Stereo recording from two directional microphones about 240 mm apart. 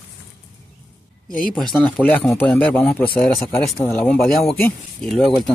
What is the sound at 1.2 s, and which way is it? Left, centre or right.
Speech, left.